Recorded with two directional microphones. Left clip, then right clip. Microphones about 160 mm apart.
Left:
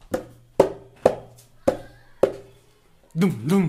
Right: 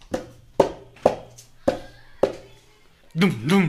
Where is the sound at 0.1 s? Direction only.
35° left (ahead or behind).